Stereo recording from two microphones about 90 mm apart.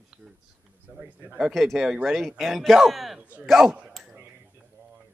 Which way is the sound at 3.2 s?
10° right (ahead or behind).